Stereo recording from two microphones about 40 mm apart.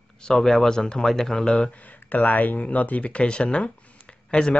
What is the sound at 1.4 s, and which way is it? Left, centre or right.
Speech, left.